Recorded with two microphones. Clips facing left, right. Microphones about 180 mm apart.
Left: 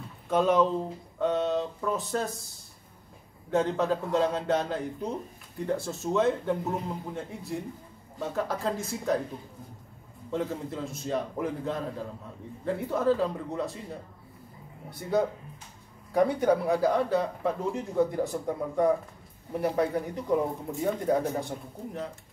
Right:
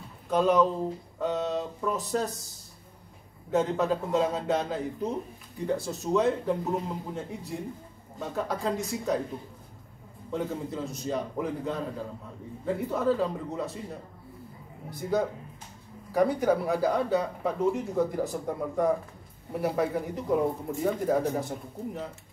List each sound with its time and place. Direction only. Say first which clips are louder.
0.3 s speech: even; centre (ahead or behind)
3.4 s speech: even; centre (ahead or behind)
10.3 s speech: even; centre (ahead or behind)
14.9 s speech: left 1 dB; centre (ahead or behind)